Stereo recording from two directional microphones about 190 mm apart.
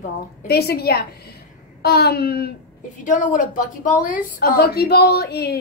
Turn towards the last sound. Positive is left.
turn(degrees=60)  # may be behind; listen again after turning